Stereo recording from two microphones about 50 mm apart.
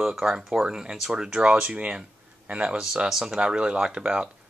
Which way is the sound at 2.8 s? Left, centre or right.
Centre.